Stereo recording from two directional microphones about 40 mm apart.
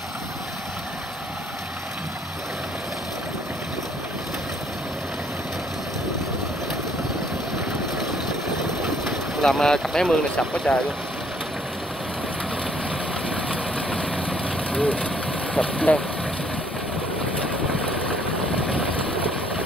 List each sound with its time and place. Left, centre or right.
9.4 s speech: centre
10.7 s speech: centre
14.0 s vehicle: left
15.5 s speech: left